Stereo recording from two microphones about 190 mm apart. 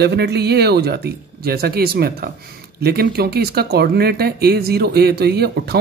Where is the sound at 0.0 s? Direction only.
60° right (ahead or behind).